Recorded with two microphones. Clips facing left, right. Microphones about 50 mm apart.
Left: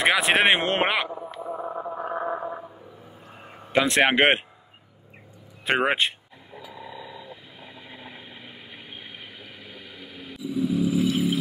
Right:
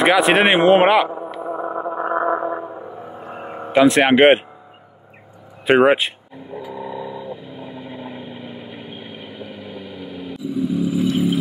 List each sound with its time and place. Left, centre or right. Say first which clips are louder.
0.0 s speech: right 6 dB; centre
1.3 s a sound: right 7 dB; right
3.7 s speech: right 7 dB; centre
5.7 s speech: right 9 dB; centre
6.3 s vehicle: right 11 dB; centre